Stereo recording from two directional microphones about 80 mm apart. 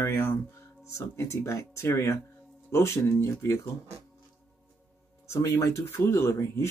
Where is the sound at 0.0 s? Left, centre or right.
Left.